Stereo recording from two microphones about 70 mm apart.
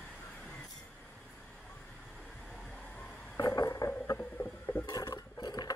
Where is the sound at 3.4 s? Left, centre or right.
Left.